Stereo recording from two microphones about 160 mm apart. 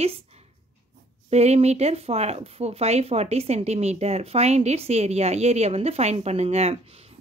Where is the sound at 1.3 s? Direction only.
40° right (ahead or behind).